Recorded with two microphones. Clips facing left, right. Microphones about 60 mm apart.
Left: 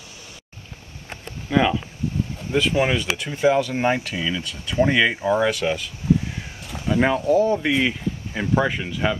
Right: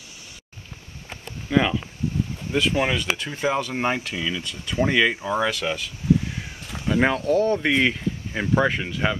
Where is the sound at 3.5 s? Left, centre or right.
Centre.